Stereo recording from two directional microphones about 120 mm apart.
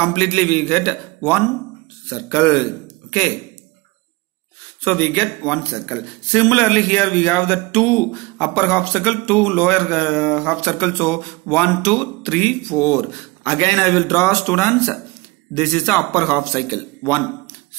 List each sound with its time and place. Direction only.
0.0 s speech: 15° left (ahead or behind)
4.8 s speech: 15° left (ahead or behind)